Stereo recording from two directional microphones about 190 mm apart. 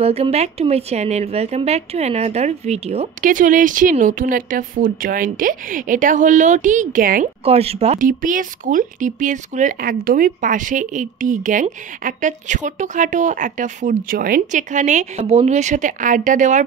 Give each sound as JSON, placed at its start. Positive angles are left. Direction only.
{"t": 0.0, "sound": "speech", "side_deg": -35}
{"t": 7.4, "sound": "speech", "side_deg": -30}